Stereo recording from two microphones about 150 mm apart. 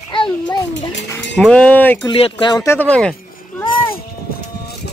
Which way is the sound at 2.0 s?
35° left (ahead or behind).